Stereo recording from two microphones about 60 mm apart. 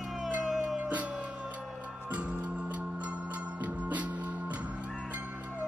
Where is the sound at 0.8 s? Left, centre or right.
Right.